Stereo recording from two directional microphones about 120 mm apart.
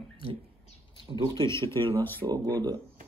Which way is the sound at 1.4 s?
25° left (ahead or behind).